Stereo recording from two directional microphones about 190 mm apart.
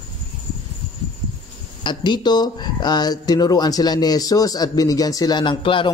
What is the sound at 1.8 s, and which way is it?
A man's voice, 25° left (ahead or behind).